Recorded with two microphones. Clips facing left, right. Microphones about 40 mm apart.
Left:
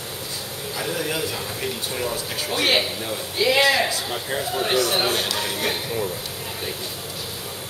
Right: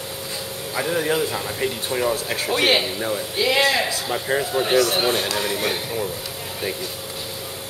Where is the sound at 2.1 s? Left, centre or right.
Right.